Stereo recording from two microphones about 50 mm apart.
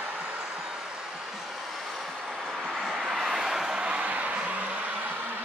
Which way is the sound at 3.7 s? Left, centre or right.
Right.